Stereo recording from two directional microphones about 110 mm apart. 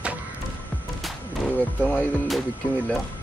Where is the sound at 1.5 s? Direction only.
15° left (ahead or behind).